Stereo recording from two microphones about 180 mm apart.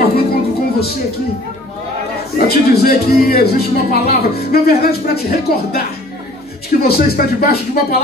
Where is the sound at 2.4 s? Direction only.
60° left (ahead or behind).